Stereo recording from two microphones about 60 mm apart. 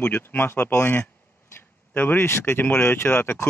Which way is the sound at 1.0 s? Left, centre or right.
Left.